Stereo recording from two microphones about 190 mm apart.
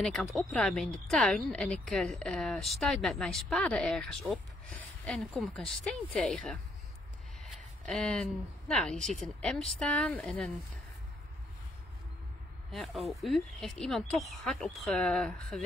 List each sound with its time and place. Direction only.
0.0 s speech: centre (ahead or behind)
12.7 s speech: centre (ahead or behind)